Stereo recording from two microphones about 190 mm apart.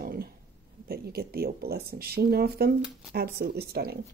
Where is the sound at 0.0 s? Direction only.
55° right (ahead or behind).